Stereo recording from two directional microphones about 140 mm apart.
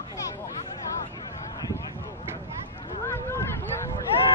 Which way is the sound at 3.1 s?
20° left (ahead or behind).